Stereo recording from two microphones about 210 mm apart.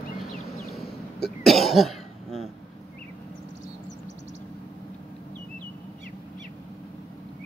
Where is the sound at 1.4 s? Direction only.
Centre (ahead or behind).